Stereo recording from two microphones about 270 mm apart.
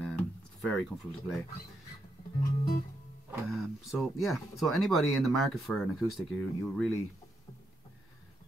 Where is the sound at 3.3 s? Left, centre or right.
Centre.